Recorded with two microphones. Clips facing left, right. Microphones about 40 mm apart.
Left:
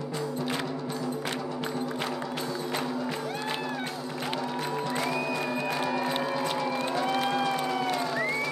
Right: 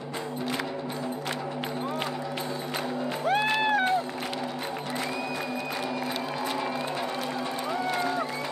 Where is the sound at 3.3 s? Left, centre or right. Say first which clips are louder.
Right 8 dB; right.